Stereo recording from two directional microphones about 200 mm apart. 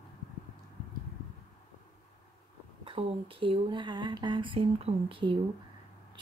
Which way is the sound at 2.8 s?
25° right (ahead or behind).